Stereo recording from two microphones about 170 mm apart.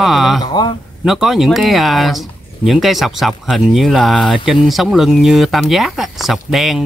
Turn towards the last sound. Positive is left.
turn(degrees=0)  # may be behind; listen again after turning